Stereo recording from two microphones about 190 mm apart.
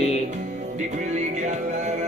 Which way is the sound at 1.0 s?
40° right (ahead or behind).